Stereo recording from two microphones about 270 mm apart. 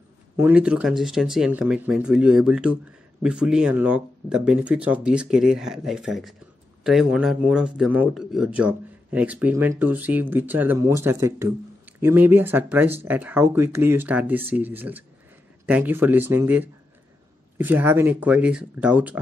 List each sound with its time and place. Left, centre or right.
0.4 s speech: centre